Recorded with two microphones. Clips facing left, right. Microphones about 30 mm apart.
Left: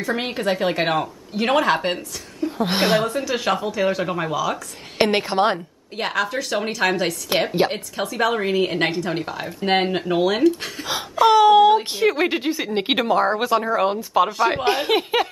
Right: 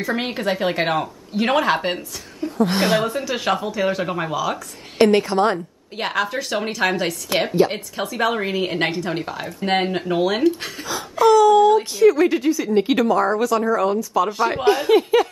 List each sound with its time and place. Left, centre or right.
0.0 s a woman's voice: centre
2.5 s speech: left
2.8 s a woman's voice: centre
3.1 s a woman's voice: centre
4.9 s speech: left
5.9 s a woman's voice: centre
11.2 s speech: left